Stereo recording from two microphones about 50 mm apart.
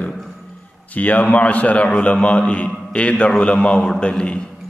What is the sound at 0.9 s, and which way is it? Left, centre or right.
A man's voice, left.